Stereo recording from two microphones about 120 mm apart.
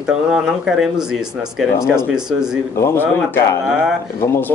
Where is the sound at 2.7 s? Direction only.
20° left (ahead or behind).